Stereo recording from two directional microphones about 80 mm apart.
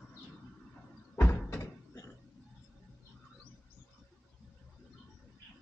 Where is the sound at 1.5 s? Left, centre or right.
Left.